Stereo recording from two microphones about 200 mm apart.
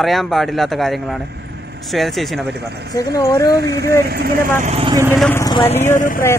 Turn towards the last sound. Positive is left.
turn(degrees=40)  # may be behind; listen again after turning